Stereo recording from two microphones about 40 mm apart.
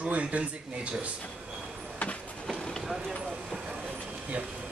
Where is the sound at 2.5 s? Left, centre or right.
Centre.